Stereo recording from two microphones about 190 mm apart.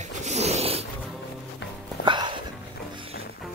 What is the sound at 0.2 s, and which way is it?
Zipper, 35° right (ahead or behind).